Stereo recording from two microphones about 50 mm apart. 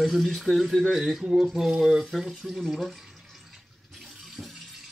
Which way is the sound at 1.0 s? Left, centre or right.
Centre.